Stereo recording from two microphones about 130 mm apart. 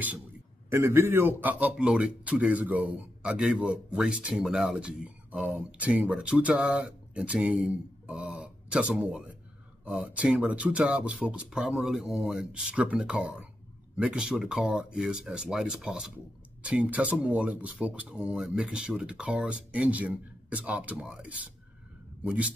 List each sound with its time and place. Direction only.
0.7 s speech: 20° right (ahead or behind)